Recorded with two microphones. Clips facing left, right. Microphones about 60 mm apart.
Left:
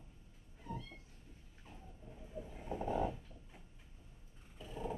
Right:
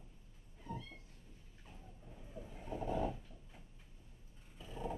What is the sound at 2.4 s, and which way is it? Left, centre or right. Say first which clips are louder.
Train: left 3 dB; centre.